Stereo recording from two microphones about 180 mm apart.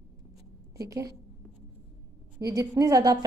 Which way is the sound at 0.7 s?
15° right (ahead or behind).